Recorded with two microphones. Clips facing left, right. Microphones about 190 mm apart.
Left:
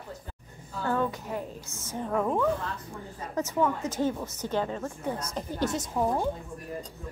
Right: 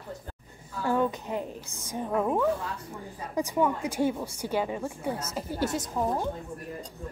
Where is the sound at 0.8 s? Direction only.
15° right (ahead or behind).